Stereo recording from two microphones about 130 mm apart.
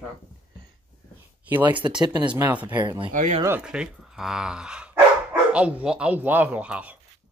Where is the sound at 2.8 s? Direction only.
40° right (ahead or behind).